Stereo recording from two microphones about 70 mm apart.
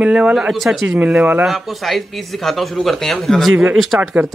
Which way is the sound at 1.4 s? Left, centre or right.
Centre.